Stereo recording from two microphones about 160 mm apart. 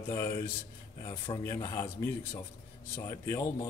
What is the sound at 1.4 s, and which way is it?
Speech, 20° left (ahead or behind).